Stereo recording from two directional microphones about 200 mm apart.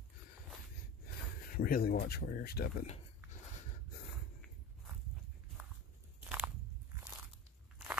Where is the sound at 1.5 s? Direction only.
45° left (ahead or behind).